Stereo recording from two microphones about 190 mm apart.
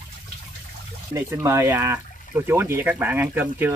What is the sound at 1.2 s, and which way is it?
Speech, 15° right (ahead or behind).